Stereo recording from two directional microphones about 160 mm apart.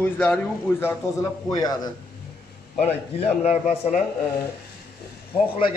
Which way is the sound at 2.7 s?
45° left (ahead or behind).